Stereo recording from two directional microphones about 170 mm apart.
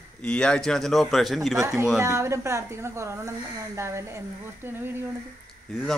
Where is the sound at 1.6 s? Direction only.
20° right (ahead or behind).